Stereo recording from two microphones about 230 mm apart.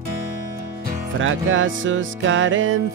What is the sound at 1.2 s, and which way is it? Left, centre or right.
Music, right.